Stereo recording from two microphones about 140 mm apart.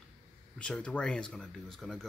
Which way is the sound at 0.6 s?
5° left (ahead or behind).